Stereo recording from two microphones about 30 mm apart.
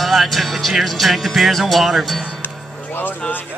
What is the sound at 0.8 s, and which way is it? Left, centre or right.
A man's voice, centre.